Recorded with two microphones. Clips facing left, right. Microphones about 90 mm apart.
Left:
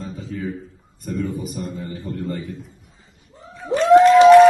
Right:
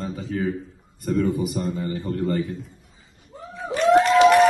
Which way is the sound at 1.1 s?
90° right.